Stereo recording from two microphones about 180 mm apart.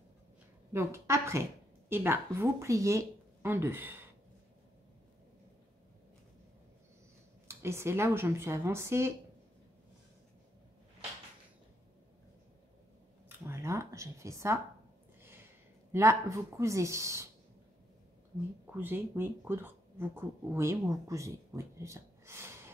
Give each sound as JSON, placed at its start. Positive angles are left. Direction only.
{"t": 0.7, "sound": "a woman's voice", "side_deg": -15}
{"t": 7.4, "sound": "speech", "side_deg": -15}
{"t": 13.5, "sound": "speech", "side_deg": -15}
{"t": 15.9, "sound": "speech", "side_deg": -15}
{"t": 18.8, "sound": "speech", "side_deg": -10}